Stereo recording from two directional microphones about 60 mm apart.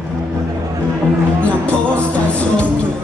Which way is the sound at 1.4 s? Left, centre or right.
Left.